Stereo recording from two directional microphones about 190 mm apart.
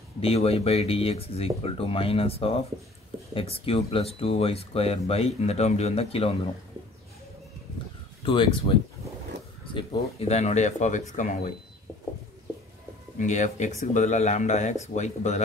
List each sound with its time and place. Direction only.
0.2 s speech: 30° left (ahead or behind)
8.3 s speech: 25° left (ahead or behind)
9.8 s speech: 30° left (ahead or behind)
13.2 s speech: 40° left (ahead or behind)